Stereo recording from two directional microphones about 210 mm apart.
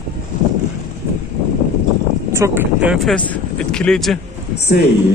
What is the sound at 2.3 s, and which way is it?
Speech, 10° right (ahead or behind).